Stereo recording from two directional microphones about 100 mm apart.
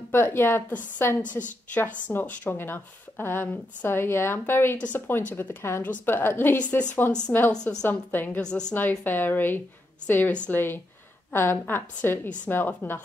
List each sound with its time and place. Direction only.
0.1 s a woman's voice: 25° left (ahead or behind)